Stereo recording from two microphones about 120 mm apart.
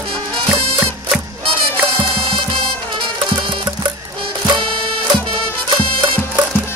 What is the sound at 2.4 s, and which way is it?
Music, 45° right (ahead or behind).